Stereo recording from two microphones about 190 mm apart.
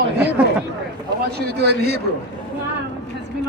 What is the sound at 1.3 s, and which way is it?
Speech, 60° right (ahead or behind).